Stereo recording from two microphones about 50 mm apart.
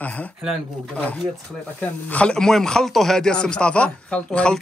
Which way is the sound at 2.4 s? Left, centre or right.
Centre.